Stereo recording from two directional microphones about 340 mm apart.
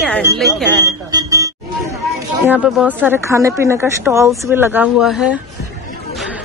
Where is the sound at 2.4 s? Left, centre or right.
Centre.